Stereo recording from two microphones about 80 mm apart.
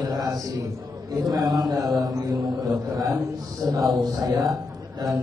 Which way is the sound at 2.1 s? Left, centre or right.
Right.